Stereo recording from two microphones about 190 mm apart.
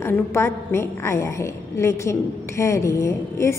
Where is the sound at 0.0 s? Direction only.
15° left (ahead or behind).